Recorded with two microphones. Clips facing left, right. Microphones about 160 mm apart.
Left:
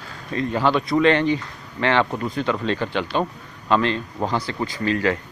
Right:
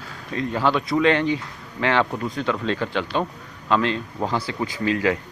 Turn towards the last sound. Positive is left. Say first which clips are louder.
# even
turn(degrees=-5)  # may be behind; listen again after turning